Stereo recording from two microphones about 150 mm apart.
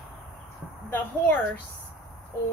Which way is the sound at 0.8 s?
10° left (ahead or behind).